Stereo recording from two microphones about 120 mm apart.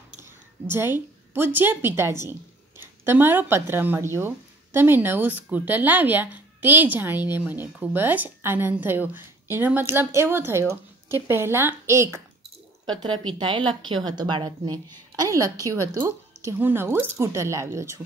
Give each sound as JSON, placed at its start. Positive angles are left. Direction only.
{"t": 0.2, "sound": "a woman's voice", "side_deg": -20}
{"t": 12.8, "sound": "a woman's voice", "side_deg": -40}
{"t": 15.1, "sound": "a woman's voice", "side_deg": -25}